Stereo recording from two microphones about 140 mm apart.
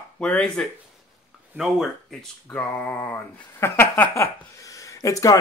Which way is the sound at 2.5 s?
10° left (ahead or behind).